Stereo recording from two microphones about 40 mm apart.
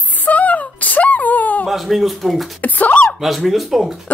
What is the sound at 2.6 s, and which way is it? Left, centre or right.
Speech, left.